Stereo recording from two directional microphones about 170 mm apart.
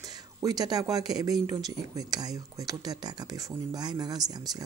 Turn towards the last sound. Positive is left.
turn(degrees=-20)  # may be behind; listen again after turning